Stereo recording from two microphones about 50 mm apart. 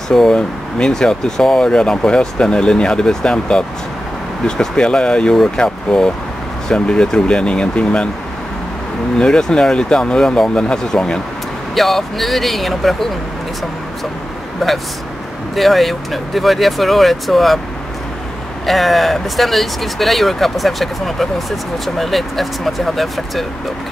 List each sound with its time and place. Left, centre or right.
0.1 s speech: centre
9.2 s speech: centre
11.7 s speech: centre
14.6 s speech: centre
18.7 s speech: centre